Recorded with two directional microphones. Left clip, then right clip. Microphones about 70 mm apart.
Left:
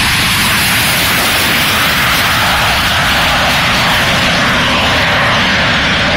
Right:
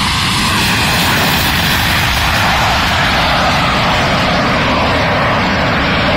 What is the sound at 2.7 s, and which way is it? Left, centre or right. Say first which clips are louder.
Vehicle: left 1 dB; left.